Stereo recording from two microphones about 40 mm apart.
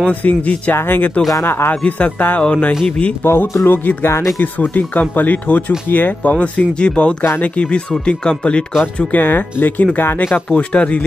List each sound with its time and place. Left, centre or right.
0.2 s speech: left
0.7 s speech: left
1.7 s speech: left
2.4 s speech: left
3.3 s speech: left
4.4 s speech: left
6.4 s speech: left
9.1 s speech: left
10.5 s speech: left